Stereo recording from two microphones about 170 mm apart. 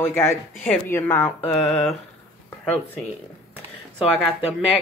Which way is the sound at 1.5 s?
40° left (ahead or behind).